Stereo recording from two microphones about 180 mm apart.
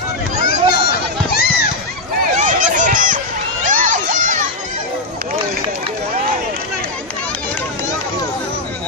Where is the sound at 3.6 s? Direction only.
45° right (ahead or behind).